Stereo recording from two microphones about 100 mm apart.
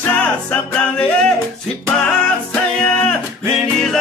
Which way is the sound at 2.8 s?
10° left (ahead or behind).